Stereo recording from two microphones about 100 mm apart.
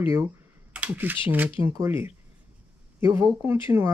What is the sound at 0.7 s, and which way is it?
Speech, 15° right (ahead or behind).